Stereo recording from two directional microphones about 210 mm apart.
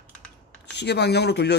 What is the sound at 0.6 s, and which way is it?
Speech, 55° left (ahead or behind).